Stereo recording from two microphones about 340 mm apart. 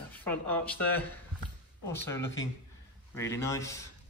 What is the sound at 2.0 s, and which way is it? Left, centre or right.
A man's voice, centre.